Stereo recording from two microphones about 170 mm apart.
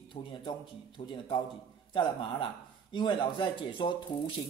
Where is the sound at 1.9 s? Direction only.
30° left (ahead or behind).